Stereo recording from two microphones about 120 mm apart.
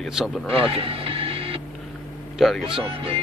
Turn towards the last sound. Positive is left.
turn(degrees=-50)  # may be behind; listen again after turning